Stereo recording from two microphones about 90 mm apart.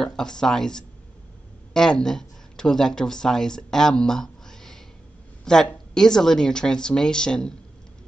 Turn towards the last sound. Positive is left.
turn(degrees=10)  # may be behind; listen again after turning